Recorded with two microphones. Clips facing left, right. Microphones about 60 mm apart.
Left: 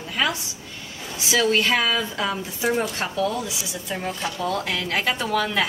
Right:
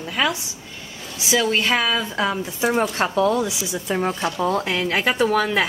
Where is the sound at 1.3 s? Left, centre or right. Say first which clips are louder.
Right 1 dB; centre.